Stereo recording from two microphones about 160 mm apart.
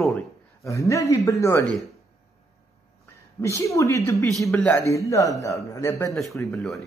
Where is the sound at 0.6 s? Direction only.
20° left (ahead or behind).